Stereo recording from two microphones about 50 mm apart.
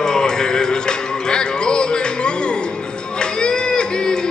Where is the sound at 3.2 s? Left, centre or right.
Centre.